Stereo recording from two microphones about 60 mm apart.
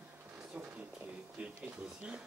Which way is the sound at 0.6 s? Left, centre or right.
Right.